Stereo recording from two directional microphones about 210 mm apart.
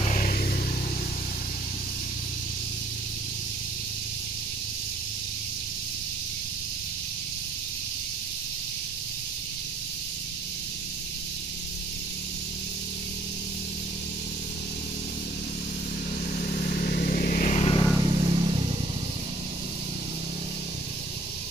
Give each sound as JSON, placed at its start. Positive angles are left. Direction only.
{"t": 0.0, "sound": "a sound", "side_deg": 35}
{"t": 16.3, "sound": "vehicle", "side_deg": 40}
{"t": 17.9, "sound": "vehicle", "side_deg": -25}